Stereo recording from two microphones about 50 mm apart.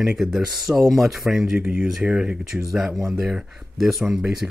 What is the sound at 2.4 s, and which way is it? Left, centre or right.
Speech, centre.